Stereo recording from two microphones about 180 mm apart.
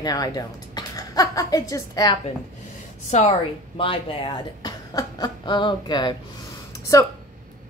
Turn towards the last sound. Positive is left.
turn(degrees=15)  # may be behind; listen again after turning